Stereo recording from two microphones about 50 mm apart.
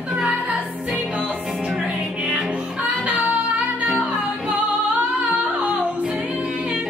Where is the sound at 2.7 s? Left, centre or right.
Right.